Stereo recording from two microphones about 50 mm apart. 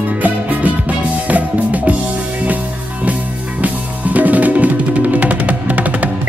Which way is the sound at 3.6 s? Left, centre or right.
Right.